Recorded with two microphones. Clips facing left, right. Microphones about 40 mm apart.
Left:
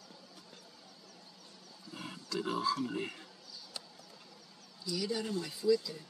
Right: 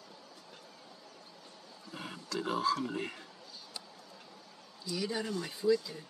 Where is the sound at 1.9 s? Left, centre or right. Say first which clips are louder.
Right 2 dB; centre.